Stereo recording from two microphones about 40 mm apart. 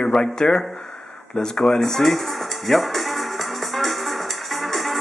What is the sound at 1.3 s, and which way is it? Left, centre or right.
Music, centre.